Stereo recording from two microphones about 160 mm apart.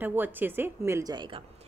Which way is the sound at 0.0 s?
10° right (ahead or behind).